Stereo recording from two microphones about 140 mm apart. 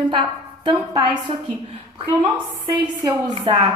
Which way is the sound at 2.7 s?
30° right (ahead or behind).